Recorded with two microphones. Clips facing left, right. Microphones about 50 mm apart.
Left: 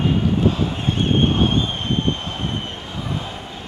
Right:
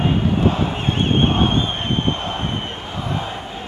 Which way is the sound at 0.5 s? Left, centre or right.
Right.